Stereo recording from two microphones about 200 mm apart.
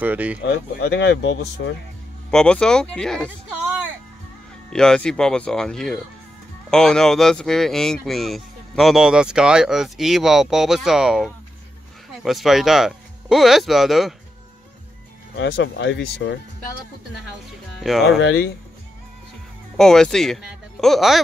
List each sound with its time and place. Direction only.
0.0 s speech: 5° right (ahead or behind)
0.5 s speech: 60° left (ahead or behind)
2.3 s speech: 5° left (ahead or behind)
4.6 s speech: 5° left (ahead or behind)
15.3 s speech: 60° left (ahead or behind)
17.7 s speech: centre (ahead or behind)
19.8 s speech: 5° left (ahead or behind)